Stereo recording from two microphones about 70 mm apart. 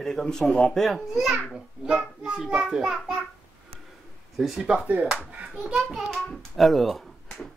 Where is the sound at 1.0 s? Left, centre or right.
Centre.